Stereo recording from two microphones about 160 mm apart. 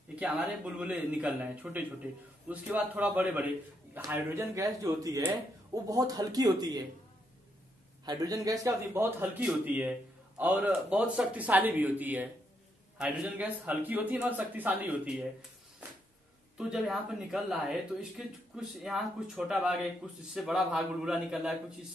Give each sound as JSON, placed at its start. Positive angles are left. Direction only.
{"t": 0.1, "sound": "a man's voice", "side_deg": -5}
{"t": 8.0, "sound": "a man's voice", "side_deg": -25}
{"t": 16.5, "sound": "speech", "side_deg": -5}